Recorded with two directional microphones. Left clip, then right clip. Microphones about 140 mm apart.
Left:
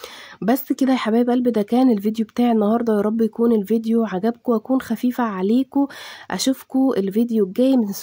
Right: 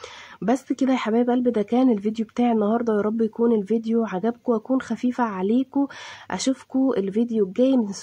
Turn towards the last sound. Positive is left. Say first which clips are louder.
# left 2 dB
turn(degrees=40)  # may be behind; listen again after turning